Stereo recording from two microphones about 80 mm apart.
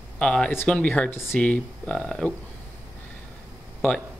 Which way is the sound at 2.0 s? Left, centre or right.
Centre.